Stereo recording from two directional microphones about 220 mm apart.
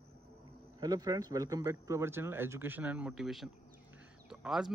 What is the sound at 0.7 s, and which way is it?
Speech, 15° right (ahead or behind).